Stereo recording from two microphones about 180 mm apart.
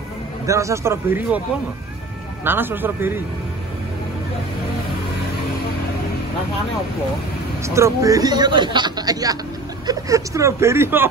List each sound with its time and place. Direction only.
0.5 s speech: 15° right (ahead or behind)
2.4 s speech: 10° right (ahead or behind)
7.6 s a man's voice: 15° right (ahead or behind)